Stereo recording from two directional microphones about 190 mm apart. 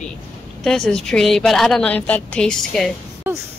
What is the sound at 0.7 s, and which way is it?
A woman's voice, 5° left (ahead or behind).